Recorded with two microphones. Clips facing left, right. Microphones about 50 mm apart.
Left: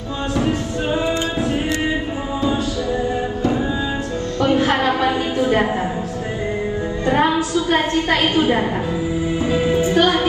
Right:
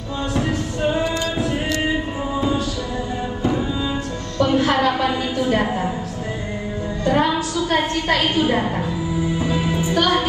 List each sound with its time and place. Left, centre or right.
0.4 s music: left
4.4 s a sound: left
7.1 s a woman's voice: left
9.4 s music: left